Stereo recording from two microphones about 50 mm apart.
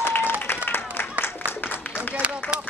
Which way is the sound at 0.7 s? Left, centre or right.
Left.